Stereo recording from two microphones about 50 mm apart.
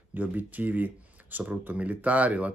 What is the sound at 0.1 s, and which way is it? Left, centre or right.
Speech, right.